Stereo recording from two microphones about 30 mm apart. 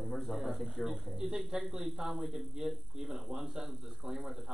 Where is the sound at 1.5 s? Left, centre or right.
Right.